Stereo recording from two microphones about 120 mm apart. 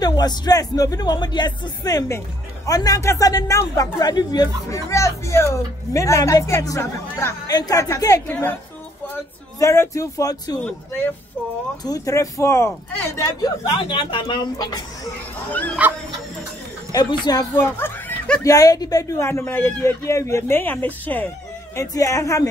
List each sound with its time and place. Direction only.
0.0 s speech: 35° left (ahead or behind)
7.4 s speech: 35° left (ahead or behind)
9.6 s speech: 25° left (ahead or behind)
10.6 s speech: 15° left (ahead or behind)
11.8 s speech: 30° left (ahead or behind)
13.7 s speech: 45° left (ahead or behind)
15.8 s speech: 15° right (ahead or behind)
16.9 s speech: 35° left (ahead or behind)
17.6 s speech: 20° left (ahead or behind)
18.4 s speech: 30° left (ahead or behind); by 21.3 s 15° left (ahead or behind)
21.7 s speech: 25° left (ahead or behind)